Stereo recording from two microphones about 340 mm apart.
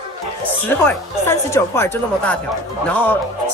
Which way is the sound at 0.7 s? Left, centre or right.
Centre.